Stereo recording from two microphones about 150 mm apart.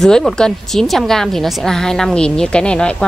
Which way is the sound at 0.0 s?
Centre (ahead or behind).